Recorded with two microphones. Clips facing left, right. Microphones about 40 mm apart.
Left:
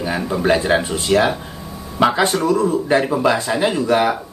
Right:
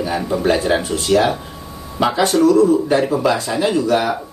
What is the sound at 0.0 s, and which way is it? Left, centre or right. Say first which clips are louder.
Speech: right 1 dB; centre.